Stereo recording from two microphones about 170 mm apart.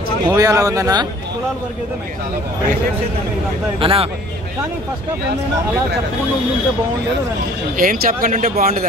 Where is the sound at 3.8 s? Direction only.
35° right (ahead or behind).